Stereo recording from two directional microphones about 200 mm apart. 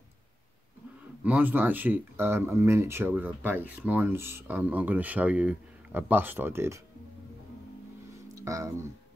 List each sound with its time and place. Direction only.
1.2 s speech: 10° right (ahead or behind)
8.4 s speech: 15° right (ahead or behind)